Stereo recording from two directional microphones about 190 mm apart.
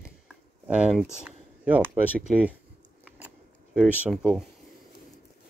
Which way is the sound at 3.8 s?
5° right (ahead or behind).